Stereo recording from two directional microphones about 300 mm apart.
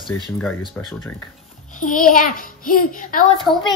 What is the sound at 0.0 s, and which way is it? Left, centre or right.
Speech, centre.